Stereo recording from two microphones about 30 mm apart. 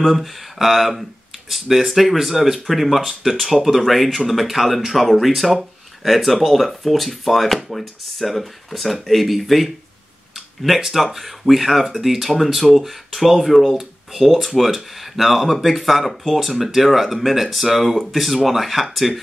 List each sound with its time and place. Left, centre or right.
0.0 s speech: centre
10.3 s tick-tock: centre
10.8 s speech: centre